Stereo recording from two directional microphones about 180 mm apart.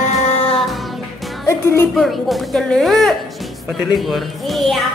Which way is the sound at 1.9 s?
Centre (ahead or behind).